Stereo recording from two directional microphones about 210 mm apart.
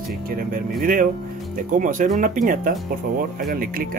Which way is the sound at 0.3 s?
45° right (ahead or behind).